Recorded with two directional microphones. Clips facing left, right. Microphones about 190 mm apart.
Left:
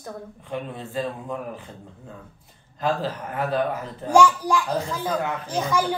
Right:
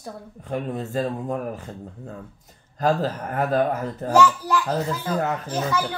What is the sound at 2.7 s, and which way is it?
Speech, 45° right (ahead or behind).